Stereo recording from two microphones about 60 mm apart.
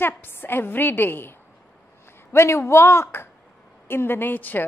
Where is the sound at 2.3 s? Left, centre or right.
Left.